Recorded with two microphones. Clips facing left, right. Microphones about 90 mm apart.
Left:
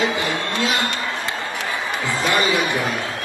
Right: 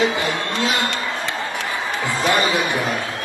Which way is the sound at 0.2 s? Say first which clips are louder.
Right 1 dB; 25° right (ahead or behind).